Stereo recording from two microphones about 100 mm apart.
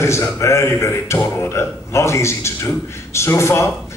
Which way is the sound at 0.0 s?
30° left (ahead or behind).